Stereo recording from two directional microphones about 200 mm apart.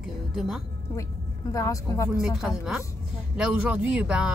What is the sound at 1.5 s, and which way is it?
Speech, 15° left (ahead or behind).